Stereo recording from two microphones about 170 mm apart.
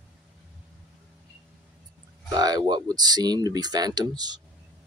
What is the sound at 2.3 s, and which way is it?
Speech, 25° right (ahead or behind).